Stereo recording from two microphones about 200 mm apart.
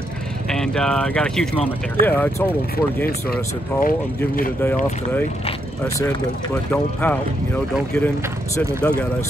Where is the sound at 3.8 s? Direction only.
45° left (ahead or behind).